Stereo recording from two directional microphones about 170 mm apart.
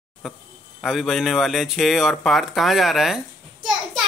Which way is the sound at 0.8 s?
Centre (ahead or behind).